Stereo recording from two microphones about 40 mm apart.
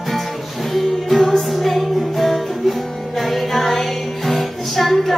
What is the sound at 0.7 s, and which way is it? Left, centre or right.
Music, centre.